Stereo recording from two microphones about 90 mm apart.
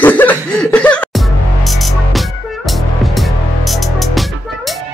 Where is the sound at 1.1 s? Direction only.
Centre (ahead or behind).